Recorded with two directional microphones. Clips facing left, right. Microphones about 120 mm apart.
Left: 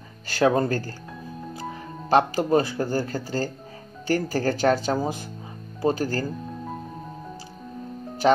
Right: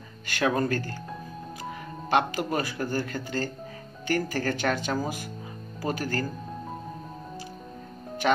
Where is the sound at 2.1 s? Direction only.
30° left (ahead or behind).